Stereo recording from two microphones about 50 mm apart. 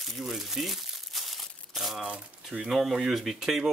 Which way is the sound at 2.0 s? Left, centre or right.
Right.